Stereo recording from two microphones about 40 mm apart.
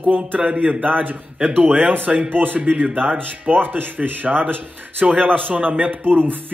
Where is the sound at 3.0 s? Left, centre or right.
Right.